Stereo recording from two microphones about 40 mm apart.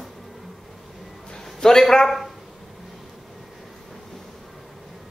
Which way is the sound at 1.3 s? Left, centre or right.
Centre.